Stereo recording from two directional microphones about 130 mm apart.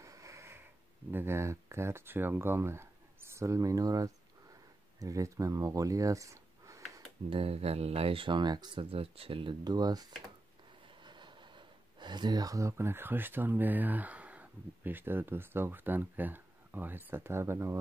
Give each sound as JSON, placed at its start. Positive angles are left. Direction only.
{"t": 0.0, "sound": "wheeze", "side_deg": -25}
{"t": 1.1, "sound": "speech", "side_deg": -20}
{"t": 7.2, "sound": "speech", "side_deg": -45}